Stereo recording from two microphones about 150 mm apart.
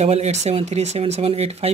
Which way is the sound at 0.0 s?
45° right (ahead or behind).